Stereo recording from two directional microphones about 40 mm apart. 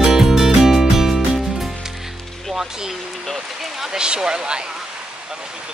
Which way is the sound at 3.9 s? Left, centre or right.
Centre.